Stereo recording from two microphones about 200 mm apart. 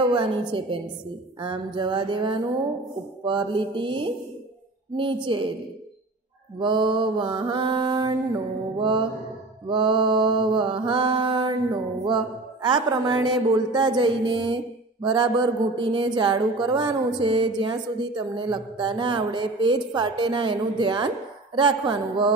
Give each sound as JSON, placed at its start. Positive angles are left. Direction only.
{"t": 0.1, "sound": "speech", "side_deg": -25}
{"t": 6.6, "sound": "speech", "side_deg": -25}